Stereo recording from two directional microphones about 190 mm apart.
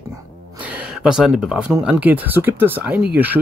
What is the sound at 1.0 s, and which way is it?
Speech, 5° right (ahead or behind).